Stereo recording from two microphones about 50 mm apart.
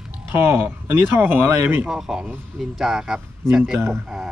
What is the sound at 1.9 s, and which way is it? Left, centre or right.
Speech, centre.